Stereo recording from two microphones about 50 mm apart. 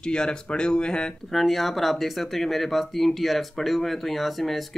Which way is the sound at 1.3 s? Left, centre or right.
Centre.